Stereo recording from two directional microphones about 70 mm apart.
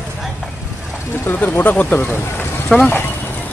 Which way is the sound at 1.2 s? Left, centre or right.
Left.